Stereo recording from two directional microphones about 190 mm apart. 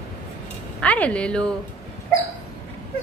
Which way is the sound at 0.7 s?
5° left (ahead or behind).